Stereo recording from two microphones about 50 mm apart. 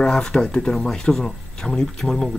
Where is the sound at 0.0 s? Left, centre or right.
Centre.